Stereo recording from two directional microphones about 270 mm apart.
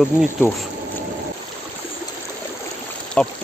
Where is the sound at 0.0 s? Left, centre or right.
Centre.